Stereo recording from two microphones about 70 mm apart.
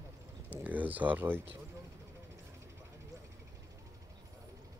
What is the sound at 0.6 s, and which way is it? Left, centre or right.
Speech, right.